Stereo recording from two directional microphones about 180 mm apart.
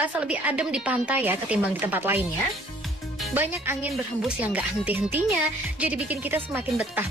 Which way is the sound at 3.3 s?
10° right (ahead or behind).